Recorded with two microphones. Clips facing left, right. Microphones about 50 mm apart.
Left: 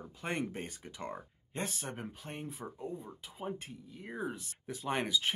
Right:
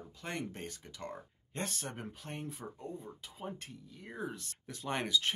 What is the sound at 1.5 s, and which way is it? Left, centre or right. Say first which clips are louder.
Speech: left 1 dB; centre.